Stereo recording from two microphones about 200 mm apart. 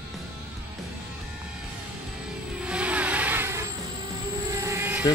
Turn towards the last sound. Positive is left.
turn(degrees=-10)  # may be behind; listen again after turning